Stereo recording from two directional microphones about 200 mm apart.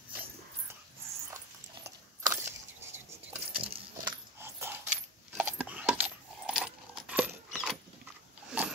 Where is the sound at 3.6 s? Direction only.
25° right (ahead or behind).